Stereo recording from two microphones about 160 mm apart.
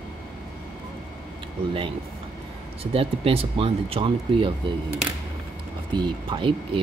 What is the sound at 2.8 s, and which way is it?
Speech, 35° right (ahead or behind).